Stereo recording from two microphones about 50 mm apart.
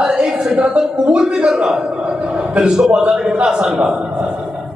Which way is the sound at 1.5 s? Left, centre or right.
Centre.